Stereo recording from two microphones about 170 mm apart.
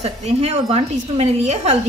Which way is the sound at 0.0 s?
40° right (ahead or behind).